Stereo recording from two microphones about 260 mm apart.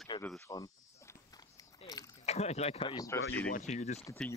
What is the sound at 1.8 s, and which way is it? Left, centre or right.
Speech, left.